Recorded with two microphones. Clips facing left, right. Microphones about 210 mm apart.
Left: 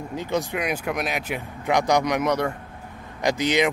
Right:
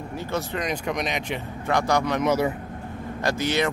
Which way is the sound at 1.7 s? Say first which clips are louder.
Left 2 dB; 15° left (ahead or behind).